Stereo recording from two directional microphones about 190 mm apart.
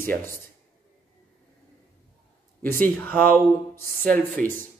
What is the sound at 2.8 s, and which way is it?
Speech, 10° left (ahead or behind).